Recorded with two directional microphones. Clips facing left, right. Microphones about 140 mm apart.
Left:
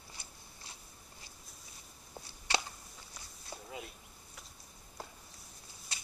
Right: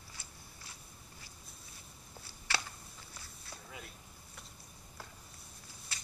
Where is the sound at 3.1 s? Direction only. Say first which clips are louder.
Left 5 dB; 20° left (ahead or behind).